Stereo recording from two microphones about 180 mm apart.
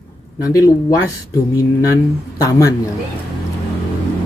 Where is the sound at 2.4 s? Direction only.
20° left (ahead or behind).